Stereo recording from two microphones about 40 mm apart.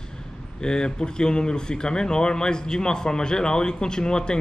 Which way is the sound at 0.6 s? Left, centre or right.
Left.